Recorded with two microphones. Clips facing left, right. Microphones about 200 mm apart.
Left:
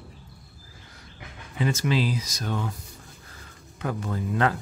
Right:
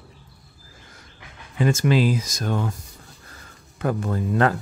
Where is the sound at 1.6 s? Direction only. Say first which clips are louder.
Right 5 dB; 50° right (ahead or behind).